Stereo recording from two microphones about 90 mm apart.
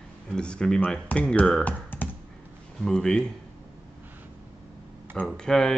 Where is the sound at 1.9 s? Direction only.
20° left (ahead or behind).